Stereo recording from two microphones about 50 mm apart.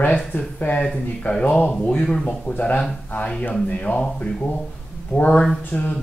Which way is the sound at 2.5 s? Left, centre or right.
Left.